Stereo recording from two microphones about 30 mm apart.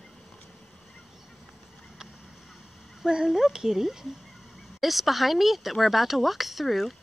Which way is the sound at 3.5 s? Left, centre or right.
Centre.